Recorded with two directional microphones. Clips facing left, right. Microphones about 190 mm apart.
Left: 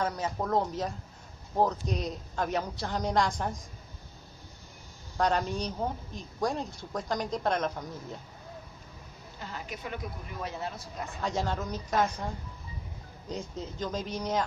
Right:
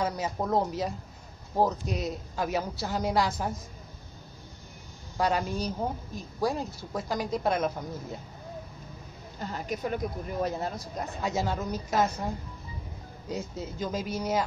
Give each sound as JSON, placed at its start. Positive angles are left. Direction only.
{"t": 0.0, "sound": "a woman's voice", "side_deg": -10}
{"t": 5.1, "sound": "a woman's voice", "side_deg": -5}
{"t": 9.4, "sound": "speech", "side_deg": -45}
{"t": 11.1, "sound": "a woman's voice", "side_deg": -10}
{"t": 13.3, "sound": "a woman's voice", "side_deg": -5}